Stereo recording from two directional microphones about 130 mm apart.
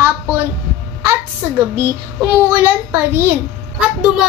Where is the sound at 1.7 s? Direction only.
20° right (ahead or behind).